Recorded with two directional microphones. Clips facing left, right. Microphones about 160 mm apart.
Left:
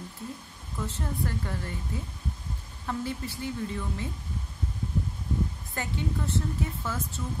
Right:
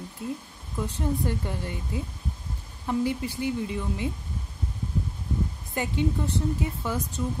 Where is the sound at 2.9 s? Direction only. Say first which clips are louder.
Right 6 dB; 15° right (ahead or behind).